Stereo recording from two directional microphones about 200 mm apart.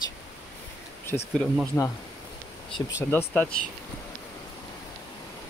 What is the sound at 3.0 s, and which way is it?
Speech, 10° left (ahead or behind).